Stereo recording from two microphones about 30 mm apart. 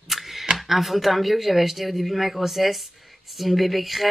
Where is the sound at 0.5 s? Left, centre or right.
Centre.